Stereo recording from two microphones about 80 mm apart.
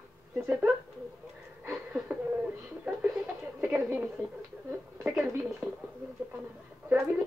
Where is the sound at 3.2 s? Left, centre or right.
Centre.